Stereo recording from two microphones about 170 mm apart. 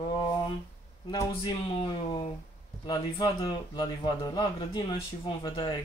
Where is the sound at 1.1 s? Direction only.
25° left (ahead or behind).